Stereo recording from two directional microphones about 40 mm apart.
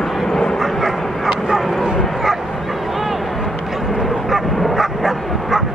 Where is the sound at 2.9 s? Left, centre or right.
Centre.